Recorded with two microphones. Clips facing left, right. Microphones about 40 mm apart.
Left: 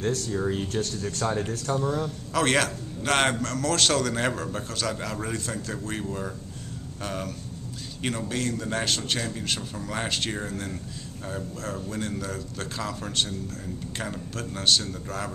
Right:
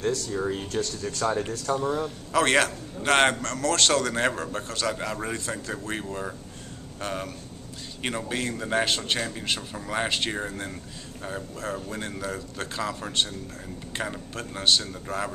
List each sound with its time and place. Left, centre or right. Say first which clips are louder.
0.3 s a man's voice: left 1 dB; centre